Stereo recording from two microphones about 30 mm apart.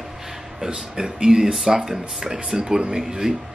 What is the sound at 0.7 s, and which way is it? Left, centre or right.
Speech, right.